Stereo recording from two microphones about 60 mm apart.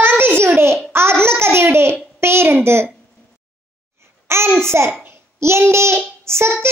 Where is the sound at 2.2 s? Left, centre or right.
Right.